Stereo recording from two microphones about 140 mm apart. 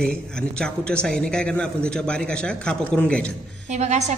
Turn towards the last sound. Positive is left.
turn(degrees=-55)  # may be behind; listen again after turning